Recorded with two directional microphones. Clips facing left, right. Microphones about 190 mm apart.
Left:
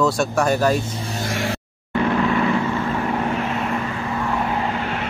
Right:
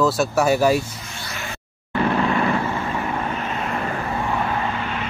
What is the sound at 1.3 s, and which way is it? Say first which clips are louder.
Vehicle: left 9 dB; 85° left.